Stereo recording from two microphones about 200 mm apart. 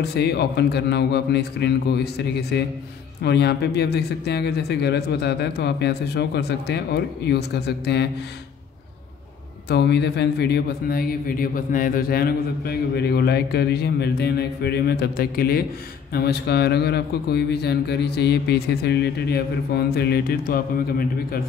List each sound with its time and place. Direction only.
0.0 s speech: 55° left (ahead or behind)
9.7 s speech: 55° left (ahead or behind)